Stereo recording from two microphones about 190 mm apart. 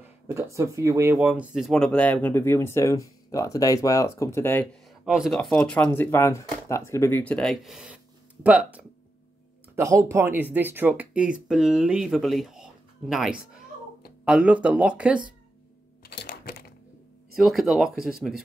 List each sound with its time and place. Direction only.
0.3 s speech: 15° right (ahead or behind); by 4.6 s 10° left (ahead or behind)
4.8 s speech: centre (ahead or behind)
9.8 s speech: 15° right (ahead or behind)
16.0 s typing: 60° left (ahead or behind)
17.4 s speech: centre (ahead or behind)